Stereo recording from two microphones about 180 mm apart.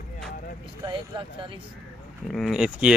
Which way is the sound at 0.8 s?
25° right (ahead or behind).